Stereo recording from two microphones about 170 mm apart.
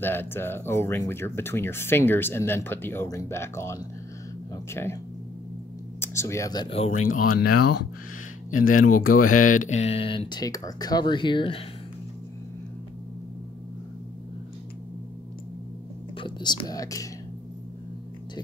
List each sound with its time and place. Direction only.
0.0 s speech: 10° left (ahead or behind)
5.9 s speech: 15° left (ahead or behind)
6.9 s speech: 50° left (ahead or behind)
8.5 s speech: 55° left (ahead or behind); by 11.6 s 30° left (ahead or behind)
16.2 s speech: 25° left (ahead or behind)